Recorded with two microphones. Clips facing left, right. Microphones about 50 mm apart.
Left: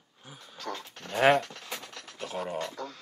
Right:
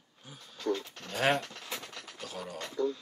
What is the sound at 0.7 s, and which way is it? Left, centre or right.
Speech, centre.